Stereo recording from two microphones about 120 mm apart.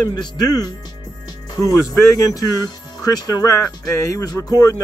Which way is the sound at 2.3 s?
30° left (ahead or behind).